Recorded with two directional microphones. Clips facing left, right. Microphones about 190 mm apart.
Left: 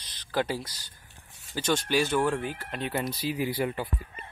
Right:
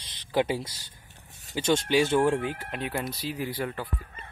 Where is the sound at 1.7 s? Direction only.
20° right (ahead or behind).